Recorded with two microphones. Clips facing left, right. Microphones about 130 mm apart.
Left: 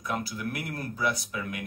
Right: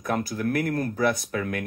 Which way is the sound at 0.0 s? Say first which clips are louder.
Right 6 dB; 50° right (ahead or behind).